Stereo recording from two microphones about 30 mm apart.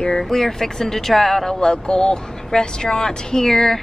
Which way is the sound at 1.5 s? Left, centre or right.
Left.